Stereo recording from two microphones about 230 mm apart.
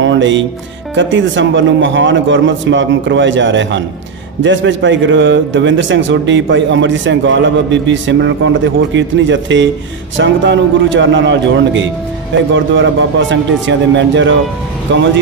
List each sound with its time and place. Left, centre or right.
0.0 s music: right
0.9 s a man's voice: right